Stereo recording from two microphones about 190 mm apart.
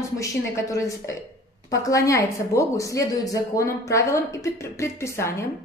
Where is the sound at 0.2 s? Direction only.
15° left (ahead or behind).